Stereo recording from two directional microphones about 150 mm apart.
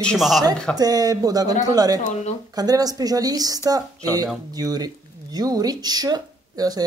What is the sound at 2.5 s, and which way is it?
Speech, 25° right (ahead or behind).